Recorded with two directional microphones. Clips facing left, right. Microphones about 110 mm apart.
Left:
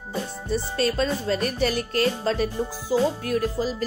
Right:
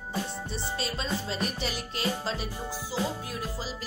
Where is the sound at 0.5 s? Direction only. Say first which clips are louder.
Left 12 dB; 50° left (ahead or behind).